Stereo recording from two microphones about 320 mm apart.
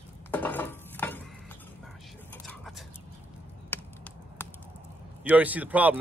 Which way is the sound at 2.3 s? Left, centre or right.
Centre.